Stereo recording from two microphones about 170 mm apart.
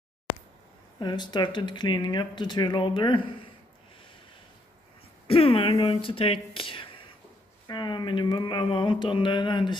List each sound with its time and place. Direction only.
0.9 s speech: 25° left (ahead or behind)
5.3 s speech: 35° left (ahead or behind)